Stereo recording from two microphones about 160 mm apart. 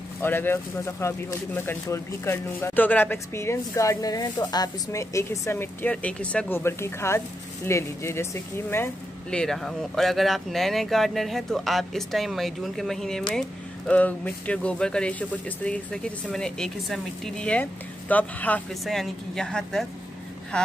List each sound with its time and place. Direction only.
0.2 s speech: 15° left (ahead or behind)